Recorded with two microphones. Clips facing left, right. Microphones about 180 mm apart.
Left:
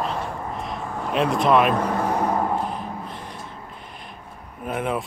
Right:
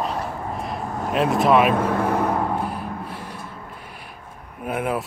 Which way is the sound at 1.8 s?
55° right (ahead or behind).